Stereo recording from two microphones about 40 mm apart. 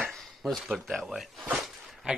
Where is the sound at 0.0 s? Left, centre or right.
Centre.